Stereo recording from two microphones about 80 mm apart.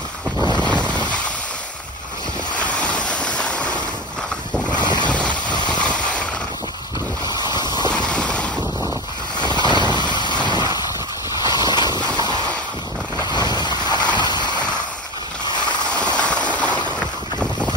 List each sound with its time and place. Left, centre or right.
0.6 s boat: centre
2.5 s boat: centre
5.0 s vehicle: centre
7.2 s a sound: left
7.9 s a sound: centre
9.5 s vehicle: left
11.4 s a sound: left
13.2 s vehicle: left
14.1 s boat: left
15.8 s boat: centre